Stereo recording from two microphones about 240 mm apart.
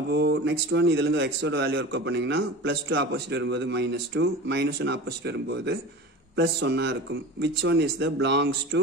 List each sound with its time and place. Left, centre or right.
0.1 s speech: right